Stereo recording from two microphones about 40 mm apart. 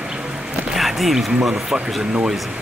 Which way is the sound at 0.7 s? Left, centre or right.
Centre.